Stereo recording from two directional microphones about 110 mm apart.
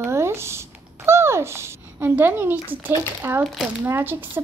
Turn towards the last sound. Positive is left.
turn(degrees=-20)  # may be behind; listen again after turning